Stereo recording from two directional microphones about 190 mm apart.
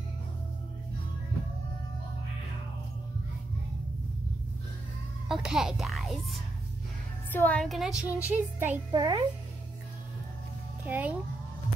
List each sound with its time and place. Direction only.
5.3 s speech: 5° right (ahead or behind)
8.9 s a child's voice: 20° right (ahead or behind)
10.9 s speech: 10° right (ahead or behind)